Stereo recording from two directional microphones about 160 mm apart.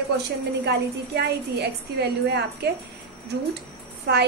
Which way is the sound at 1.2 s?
90° right.